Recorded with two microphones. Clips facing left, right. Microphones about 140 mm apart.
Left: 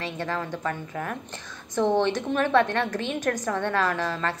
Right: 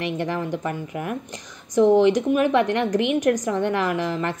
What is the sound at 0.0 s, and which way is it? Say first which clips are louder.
Speech: right 5 dB; 15° right (ahead or behind).